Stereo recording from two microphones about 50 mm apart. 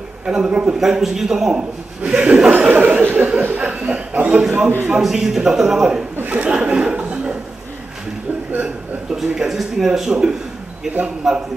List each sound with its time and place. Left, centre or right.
0.3 s speech: centre
0.7 s speech: centre
2.7 s speech: right
3.5 s a sound: right
4.9 s speech: centre
6.2 s chuckle: right
9.1 s speech: centre